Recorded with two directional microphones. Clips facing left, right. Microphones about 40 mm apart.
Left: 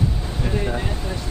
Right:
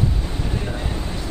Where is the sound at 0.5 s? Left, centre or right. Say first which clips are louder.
Left 6 dB; centre.